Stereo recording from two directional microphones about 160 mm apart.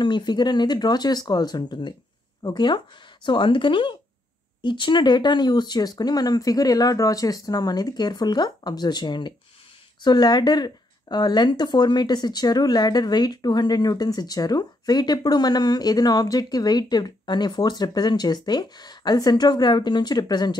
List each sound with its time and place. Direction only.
0.0 s speech: 30° left (ahead or behind)